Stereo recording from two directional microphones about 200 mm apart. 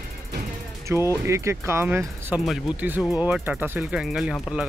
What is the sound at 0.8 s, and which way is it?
Speech, 15° right (ahead or behind).